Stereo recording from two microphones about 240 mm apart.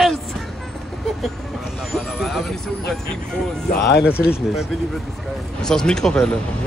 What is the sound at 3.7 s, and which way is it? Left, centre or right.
Speech, left.